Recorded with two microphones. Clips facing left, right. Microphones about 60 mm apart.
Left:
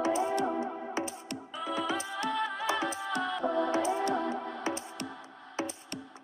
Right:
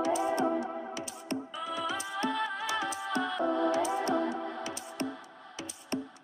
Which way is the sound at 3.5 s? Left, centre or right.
Left.